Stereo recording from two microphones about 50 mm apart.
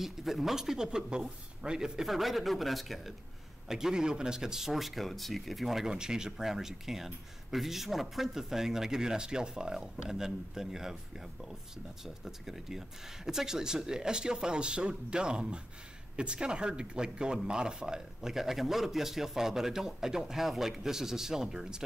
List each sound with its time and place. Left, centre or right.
0.0 s speech: centre
3.6 s speech: centre
12.3 s speech: centre